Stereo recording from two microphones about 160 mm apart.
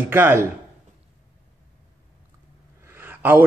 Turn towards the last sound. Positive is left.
turn(degrees=-10)  # may be behind; listen again after turning